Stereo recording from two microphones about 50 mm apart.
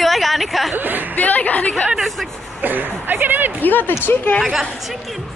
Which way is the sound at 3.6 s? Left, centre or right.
Left.